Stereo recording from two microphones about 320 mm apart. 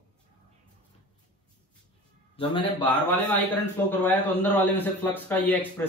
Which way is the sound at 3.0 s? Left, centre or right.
Centre.